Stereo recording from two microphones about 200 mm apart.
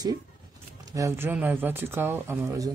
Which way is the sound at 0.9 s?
15° right (ahead or behind).